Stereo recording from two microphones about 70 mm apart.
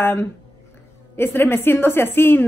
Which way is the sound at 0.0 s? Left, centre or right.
Left.